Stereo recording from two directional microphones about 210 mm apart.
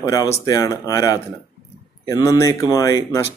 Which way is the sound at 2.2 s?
15° left (ahead or behind).